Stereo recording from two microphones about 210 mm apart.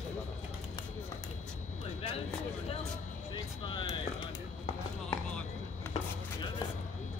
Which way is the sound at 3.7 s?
20° left (ahead or behind).